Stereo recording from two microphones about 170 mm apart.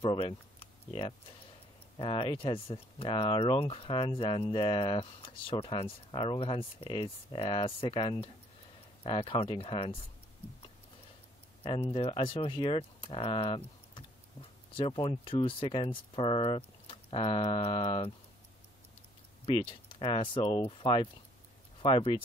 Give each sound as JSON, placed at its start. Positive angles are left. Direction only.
{"t": 0.0, "sound": "speech", "side_deg": 35}
{"t": 11.6, "sound": "speech", "side_deg": 30}
{"t": 14.8, "sound": "speech", "side_deg": 30}
{"t": 19.9, "sound": "speech", "side_deg": 30}